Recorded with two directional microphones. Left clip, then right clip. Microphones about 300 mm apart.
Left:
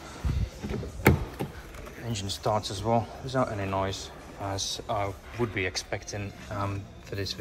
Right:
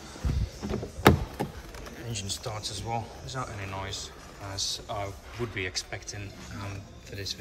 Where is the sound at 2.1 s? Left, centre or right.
Centre.